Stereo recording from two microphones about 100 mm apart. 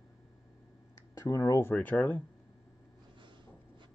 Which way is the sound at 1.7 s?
15° left (ahead or behind).